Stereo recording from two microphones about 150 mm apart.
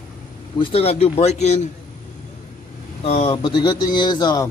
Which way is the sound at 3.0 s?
40° left (ahead or behind).